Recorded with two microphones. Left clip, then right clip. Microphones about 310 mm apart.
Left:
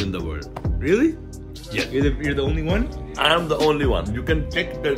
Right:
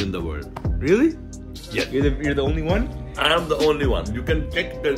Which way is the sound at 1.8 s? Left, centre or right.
Centre.